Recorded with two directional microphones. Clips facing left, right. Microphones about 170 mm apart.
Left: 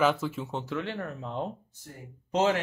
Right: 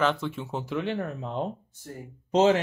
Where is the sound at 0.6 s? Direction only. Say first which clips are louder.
Right 4 dB; 15° right (ahead or behind).